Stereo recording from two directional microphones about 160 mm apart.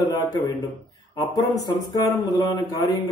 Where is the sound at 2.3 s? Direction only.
20° left (ahead or behind).